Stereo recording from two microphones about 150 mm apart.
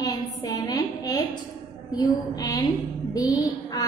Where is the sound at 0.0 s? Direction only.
25° left (ahead or behind).